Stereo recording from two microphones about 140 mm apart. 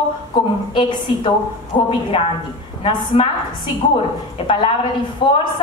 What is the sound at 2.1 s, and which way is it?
A woman's voice, 40° left (ahead or behind).